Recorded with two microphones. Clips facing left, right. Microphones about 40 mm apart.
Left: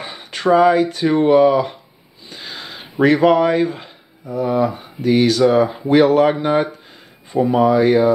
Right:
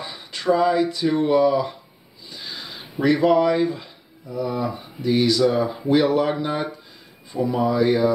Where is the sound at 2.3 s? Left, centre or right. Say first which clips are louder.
Left 3 dB; left.